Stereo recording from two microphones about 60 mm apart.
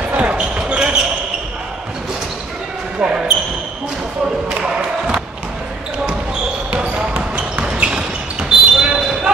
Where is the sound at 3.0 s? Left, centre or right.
Centre.